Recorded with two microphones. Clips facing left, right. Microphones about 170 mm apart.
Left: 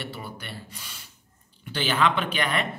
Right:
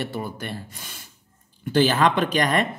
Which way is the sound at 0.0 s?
45° right (ahead or behind).